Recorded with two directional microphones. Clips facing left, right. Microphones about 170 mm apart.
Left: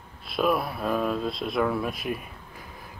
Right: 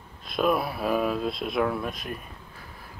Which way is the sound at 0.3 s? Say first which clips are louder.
Even; centre (ahead or behind).